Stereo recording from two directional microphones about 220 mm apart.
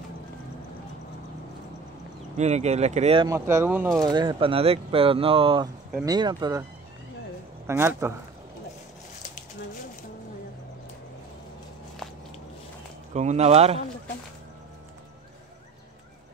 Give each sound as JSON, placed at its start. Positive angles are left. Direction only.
{"t": 2.3, "sound": "speech", "side_deg": -30}
{"t": 3.3, "sound": "speech", "side_deg": -10}
{"t": 7.6, "sound": "speech", "side_deg": -10}
{"t": 13.1, "sound": "speech", "side_deg": -30}